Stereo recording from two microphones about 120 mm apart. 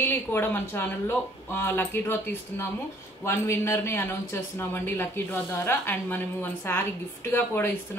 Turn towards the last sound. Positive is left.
turn(degrees=15)  # may be behind; listen again after turning